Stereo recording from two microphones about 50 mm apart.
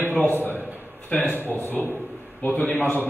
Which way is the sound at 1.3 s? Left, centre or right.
Right.